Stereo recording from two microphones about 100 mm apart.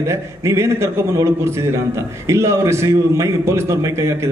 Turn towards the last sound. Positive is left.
turn(degrees=-30)  # may be behind; listen again after turning